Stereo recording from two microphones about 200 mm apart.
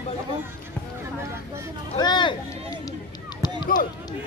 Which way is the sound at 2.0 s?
20° left (ahead or behind).